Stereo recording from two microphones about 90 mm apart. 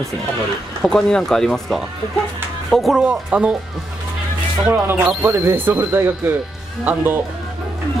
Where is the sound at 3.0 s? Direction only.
10° right (ahead or behind).